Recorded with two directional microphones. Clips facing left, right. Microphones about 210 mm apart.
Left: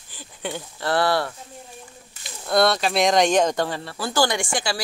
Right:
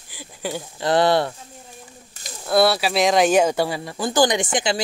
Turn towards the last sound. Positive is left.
turn(degrees=-20)  # may be behind; listen again after turning